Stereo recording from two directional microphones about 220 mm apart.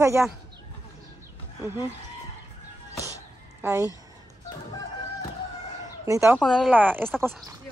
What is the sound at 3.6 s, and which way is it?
Speech, 15° right (ahead or behind).